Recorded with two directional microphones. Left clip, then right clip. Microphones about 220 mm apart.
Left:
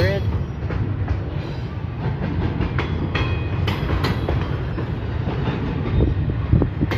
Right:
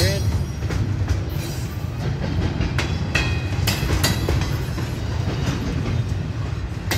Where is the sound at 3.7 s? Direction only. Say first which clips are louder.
Right 2 dB; 35° right (ahead or behind).